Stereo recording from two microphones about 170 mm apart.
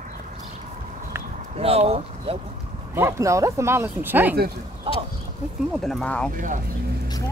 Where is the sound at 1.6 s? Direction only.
35° right (ahead or behind).